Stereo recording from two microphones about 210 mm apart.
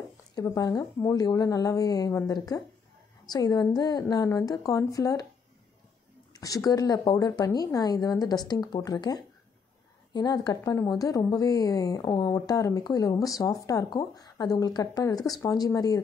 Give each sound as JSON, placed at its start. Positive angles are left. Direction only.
{"t": 0.4, "sound": "speech", "side_deg": 15}
{"t": 6.3, "sound": "speech", "side_deg": 15}